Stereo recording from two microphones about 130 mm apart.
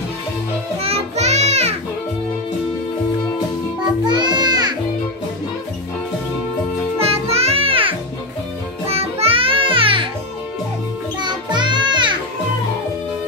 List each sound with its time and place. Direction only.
0.7 s music: 50° right (ahead or behind)
4.0 s music: 35° right (ahead or behind)
7.0 s music: 50° right (ahead or behind)
11.1 s music: 35° right (ahead or behind)